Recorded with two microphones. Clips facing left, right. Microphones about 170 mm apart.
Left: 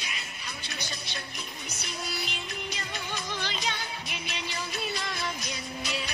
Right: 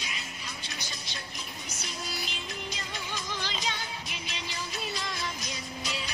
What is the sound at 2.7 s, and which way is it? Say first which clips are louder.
Music: left 2 dB; 65° left (ahead or behind).